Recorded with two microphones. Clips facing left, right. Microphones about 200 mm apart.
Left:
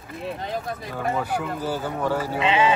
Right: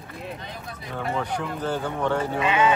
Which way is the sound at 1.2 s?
5° left (ahead or behind).